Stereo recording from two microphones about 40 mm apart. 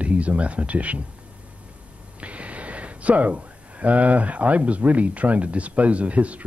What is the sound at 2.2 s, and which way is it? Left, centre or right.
Speech, right.